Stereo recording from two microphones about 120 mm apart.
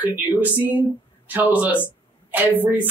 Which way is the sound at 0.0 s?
15° right (ahead or behind).